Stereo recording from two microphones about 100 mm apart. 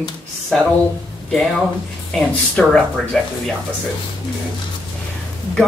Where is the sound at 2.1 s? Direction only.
10° left (ahead or behind).